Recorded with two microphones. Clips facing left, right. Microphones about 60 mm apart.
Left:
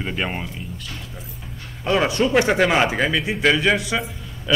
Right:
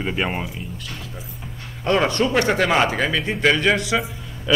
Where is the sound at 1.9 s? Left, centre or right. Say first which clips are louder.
Even; centre.